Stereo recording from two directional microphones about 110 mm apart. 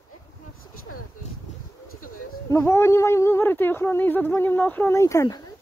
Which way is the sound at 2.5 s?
25° left (ahead or behind).